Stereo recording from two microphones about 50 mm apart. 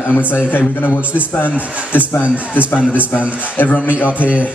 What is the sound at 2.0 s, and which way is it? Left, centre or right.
A man's voice, right.